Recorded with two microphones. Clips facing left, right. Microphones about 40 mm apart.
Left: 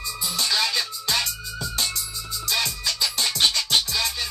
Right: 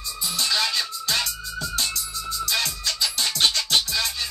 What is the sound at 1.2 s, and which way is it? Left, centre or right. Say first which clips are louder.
Music: right 1 dB; centre.